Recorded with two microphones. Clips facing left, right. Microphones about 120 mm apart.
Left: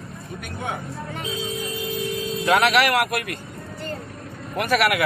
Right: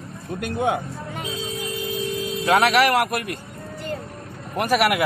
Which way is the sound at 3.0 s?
40° right (ahead or behind).